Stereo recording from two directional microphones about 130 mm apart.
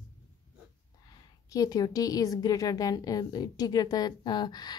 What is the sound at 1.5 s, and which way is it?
A woman's voice, 30° left (ahead or behind).